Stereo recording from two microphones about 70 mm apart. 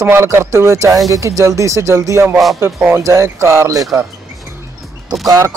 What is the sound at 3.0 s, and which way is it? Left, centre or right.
Speech, right.